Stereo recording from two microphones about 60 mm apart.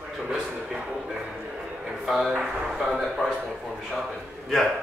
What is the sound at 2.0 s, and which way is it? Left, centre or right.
Speech, centre.